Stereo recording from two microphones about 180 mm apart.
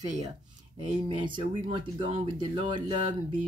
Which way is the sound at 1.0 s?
25° right (ahead or behind).